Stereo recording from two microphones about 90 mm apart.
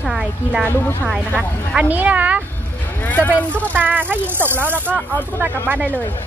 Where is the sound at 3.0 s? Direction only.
20° left (ahead or behind).